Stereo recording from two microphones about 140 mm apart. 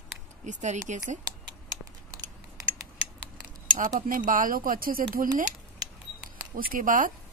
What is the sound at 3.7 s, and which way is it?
Speech, 70° right (ahead or behind).